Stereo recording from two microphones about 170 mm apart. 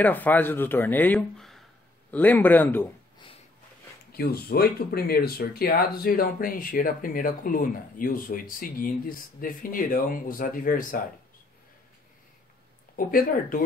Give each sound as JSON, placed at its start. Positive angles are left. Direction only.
{"t": 0.0, "sound": "speech", "side_deg": 10}
{"t": 4.1, "sound": "speech", "side_deg": 65}
{"t": 12.9, "sound": "speech", "side_deg": 55}